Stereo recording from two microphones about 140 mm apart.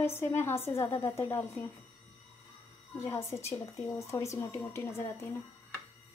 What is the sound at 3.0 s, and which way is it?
A woman's voice, 20° left (ahead or behind).